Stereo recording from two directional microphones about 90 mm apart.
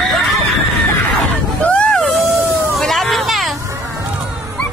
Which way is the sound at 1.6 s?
10° left (ahead or behind).